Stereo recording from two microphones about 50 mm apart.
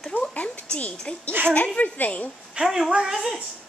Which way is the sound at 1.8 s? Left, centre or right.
Left.